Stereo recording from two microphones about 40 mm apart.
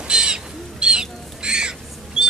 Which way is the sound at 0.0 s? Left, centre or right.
Centre.